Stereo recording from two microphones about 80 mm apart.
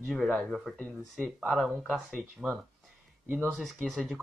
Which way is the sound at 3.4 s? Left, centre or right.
Centre.